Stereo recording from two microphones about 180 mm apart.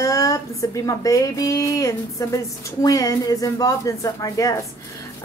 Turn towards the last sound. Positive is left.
turn(degrees=20)  # may be behind; listen again after turning